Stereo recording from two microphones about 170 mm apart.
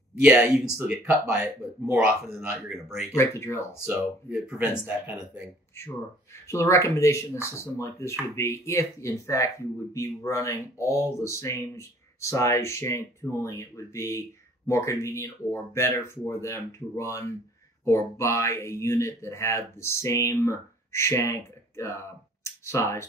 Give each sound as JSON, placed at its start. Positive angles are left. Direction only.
{"t": 0.2, "sound": "speech", "side_deg": -10}
{"t": 2.5, "sound": "speech", "side_deg": 0}
{"t": 3.2, "sound": "speech", "side_deg": 15}
{"t": 3.8, "sound": "speech", "side_deg": -5}
{"t": 6.4, "sound": "speech", "side_deg": 15}
{"t": 22.4, "sound": "a sound", "side_deg": 15}